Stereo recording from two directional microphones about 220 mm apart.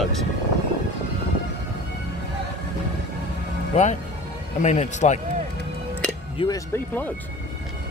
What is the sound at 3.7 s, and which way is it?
Speech, 30° left (ahead or behind).